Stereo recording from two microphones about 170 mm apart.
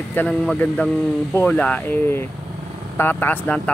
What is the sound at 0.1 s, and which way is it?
Speech, 10° left (ahead or behind).